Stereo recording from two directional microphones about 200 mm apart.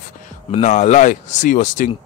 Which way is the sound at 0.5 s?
35° left (ahead or behind).